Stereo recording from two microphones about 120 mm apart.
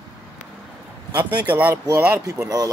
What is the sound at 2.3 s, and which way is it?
Speech, 30° right (ahead or behind).